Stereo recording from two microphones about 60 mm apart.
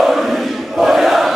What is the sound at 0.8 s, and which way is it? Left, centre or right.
Battle cry, centre.